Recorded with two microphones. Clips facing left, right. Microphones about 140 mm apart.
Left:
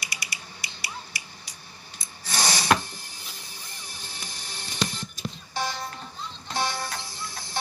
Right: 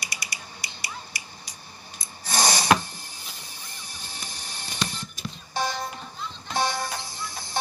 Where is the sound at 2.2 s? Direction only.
45° right (ahead or behind).